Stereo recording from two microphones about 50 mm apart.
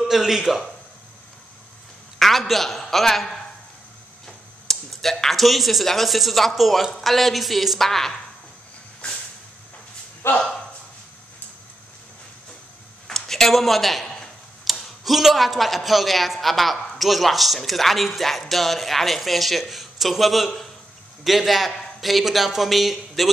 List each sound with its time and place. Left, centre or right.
0.1 s speech: centre
2.1 s a man's voice: centre
4.6 s speech: centre
10.2 s speech: left
13.0 s a sound: centre
14.6 s speech: centre